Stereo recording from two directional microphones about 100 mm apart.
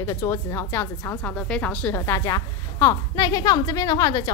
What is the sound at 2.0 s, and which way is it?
A woman's voice, 30° left (ahead or behind).